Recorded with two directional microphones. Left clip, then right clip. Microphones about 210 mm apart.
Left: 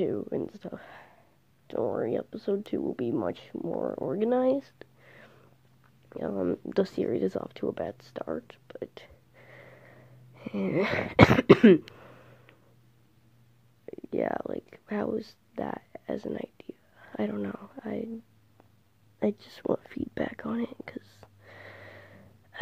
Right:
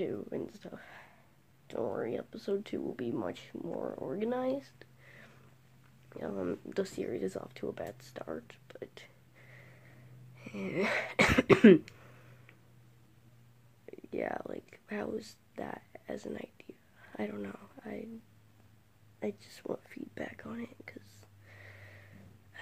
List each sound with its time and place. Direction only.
0.0 s a sound: 35° left (ahead or behind)
1.7 s speech: 35° left (ahead or behind)
13.8 s speech: 35° left (ahead or behind)
19.1 s whispering: 40° left (ahead or behind)